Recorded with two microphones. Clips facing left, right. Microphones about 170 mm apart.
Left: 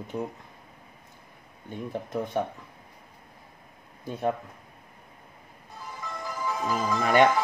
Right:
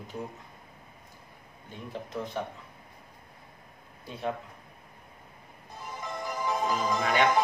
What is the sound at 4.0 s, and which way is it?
Speech, 45° left (ahead or behind).